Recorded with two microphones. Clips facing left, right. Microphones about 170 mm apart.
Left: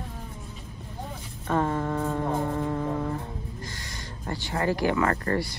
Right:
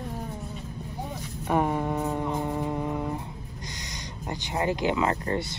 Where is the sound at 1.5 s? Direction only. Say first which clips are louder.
Right 1 dB; 15° right (ahead or behind).